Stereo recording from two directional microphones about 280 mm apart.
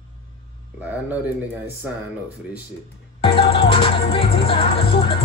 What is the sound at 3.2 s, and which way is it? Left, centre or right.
Music, centre.